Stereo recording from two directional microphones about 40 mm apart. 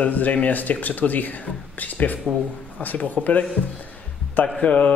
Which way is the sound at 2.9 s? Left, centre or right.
Left.